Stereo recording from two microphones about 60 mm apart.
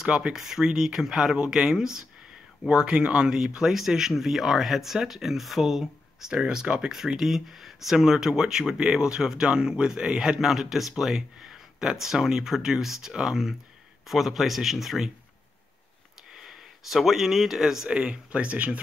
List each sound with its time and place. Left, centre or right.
0.0 s speech: centre
16.3 s speech: centre
17.8 s speech: centre